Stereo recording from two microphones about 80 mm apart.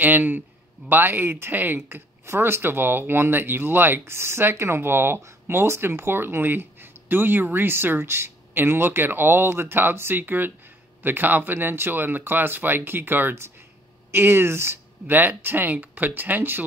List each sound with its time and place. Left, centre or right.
0.0 s speech: right